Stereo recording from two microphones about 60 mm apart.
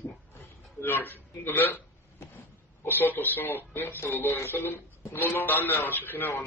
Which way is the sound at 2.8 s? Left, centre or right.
Left.